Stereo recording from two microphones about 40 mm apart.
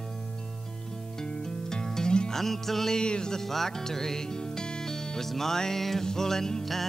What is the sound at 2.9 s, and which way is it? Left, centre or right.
Music, left.